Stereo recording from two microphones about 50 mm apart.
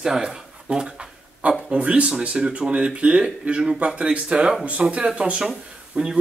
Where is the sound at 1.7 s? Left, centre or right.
Right.